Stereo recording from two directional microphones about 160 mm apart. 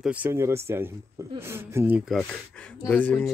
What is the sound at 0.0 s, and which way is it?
Speech, 10° right (ahead or behind).